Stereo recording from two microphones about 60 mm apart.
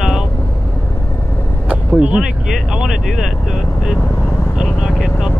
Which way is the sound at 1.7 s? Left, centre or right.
Right.